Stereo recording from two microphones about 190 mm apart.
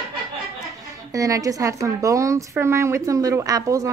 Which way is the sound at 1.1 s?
20° right (ahead or behind).